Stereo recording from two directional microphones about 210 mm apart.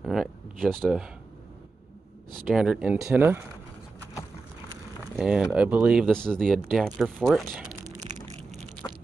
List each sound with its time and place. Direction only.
0.0 s a sound: centre (ahead or behind)
2.4 s speech: 5° right (ahead or behind)
5.1 s speech: 5° right (ahead or behind)
8.0 s crushing: 35° right (ahead or behind)